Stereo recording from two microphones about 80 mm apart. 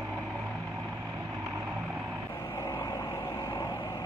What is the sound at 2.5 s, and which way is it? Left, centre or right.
Vehicle, left.